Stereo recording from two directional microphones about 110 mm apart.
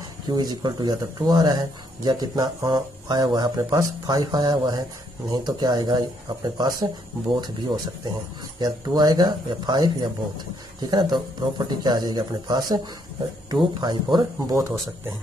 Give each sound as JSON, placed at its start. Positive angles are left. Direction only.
{"t": 0.3, "sound": "speech", "side_deg": -40}